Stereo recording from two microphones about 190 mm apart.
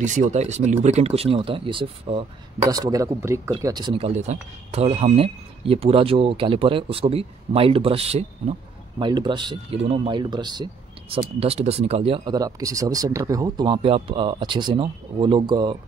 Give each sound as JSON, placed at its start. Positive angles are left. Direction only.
{"t": 0.0, "sound": "speech", "side_deg": -40}
{"t": 2.7, "sound": "speech", "side_deg": -20}